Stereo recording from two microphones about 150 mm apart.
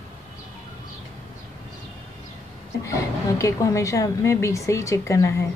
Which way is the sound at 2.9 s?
20° left (ahead or behind).